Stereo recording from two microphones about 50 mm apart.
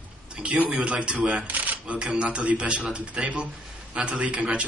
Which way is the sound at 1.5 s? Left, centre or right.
Right.